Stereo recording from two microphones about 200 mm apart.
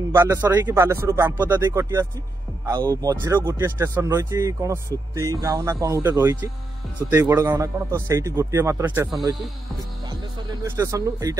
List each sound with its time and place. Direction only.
0.1 s speech: 10° right (ahead or behind)
10.5 s speech: 15° right (ahead or behind)